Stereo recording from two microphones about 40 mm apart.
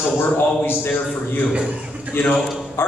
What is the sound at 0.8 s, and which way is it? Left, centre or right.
Speech, left.